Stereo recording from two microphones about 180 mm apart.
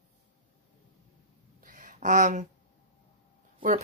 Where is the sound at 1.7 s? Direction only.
45° right (ahead or behind).